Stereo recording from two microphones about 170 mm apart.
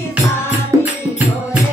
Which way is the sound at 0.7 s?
15° right (ahead or behind).